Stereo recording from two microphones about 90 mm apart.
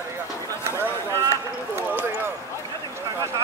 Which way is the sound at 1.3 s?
30° right (ahead or behind).